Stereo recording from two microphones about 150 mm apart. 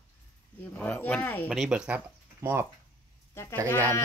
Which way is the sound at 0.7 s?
10° left (ahead or behind).